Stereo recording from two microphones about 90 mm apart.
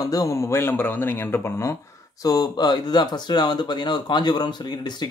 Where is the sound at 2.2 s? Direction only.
45° left (ahead or behind).